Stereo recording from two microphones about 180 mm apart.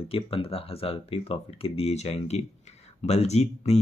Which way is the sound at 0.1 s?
30° left (ahead or behind).